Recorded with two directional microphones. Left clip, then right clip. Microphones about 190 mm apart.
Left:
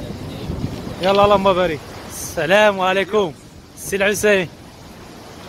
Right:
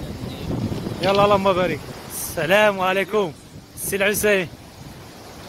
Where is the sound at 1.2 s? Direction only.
Centre (ahead or behind).